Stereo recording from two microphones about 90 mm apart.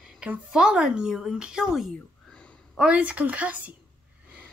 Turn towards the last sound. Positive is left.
turn(degrees=-15)  # may be behind; listen again after turning